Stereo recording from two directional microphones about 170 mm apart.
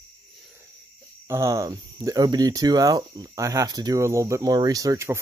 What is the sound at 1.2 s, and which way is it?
Speech, 15° right (ahead or behind).